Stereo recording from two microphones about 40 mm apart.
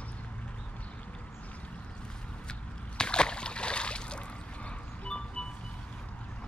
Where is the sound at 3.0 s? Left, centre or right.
Left.